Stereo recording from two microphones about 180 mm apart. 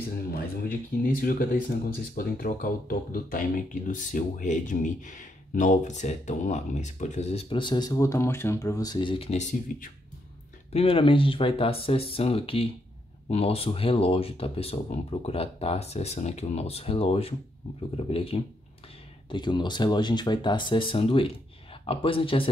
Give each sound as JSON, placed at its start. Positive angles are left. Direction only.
{"t": 1.0, "sound": "speech", "side_deg": 50}